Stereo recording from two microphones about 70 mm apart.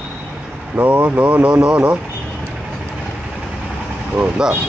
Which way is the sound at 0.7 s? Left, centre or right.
Right.